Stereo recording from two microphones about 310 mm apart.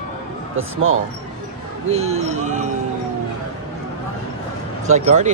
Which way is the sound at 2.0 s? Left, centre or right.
Right.